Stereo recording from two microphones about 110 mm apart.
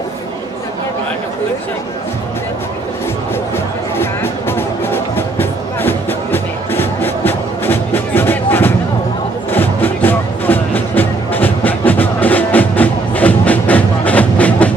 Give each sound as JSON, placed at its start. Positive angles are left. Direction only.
{"t": 3.5, "sound": "music", "side_deg": 20}